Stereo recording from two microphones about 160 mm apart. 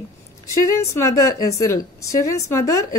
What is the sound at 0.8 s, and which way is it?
A woman's voice, 20° left (ahead or behind).